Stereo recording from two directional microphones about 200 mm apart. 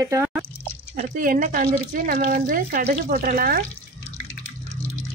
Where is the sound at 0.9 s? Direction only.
40° right (ahead or behind).